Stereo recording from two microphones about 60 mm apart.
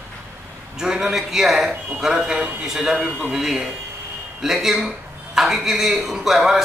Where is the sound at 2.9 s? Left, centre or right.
Right.